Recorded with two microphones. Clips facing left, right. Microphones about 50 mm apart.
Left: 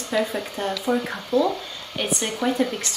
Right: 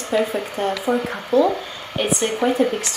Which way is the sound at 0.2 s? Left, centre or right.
Right.